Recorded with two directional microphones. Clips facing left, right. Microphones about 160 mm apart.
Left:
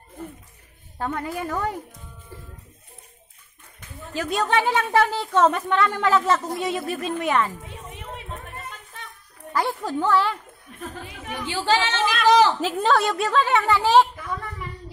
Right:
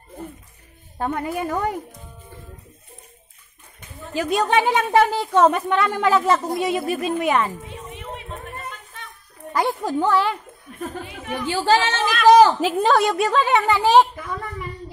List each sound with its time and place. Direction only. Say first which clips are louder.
0.9 s a woman's voice: right 3 dB; 20° right (ahead or behind)
4.1 s a woman's voice: right 3 dB; 15° right (ahead or behind)
9.5 s a woman's voice: right 3 dB; 15° right (ahead or behind)
11.4 s speech: right 4 dB; 45° right (ahead or behind)
12.5 s a woman's voice: right 3 dB; 15° right (ahead or behind)